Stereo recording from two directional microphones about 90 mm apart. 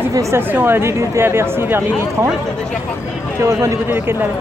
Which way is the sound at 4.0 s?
20° right (ahead or behind).